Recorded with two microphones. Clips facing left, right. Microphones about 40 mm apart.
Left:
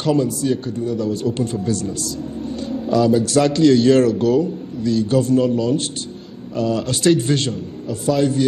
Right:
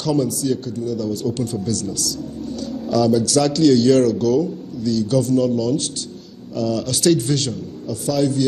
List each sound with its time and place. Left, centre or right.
0.0 s a man's voice: left